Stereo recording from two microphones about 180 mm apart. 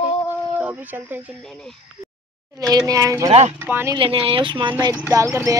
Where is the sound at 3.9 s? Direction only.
30° right (ahead or behind).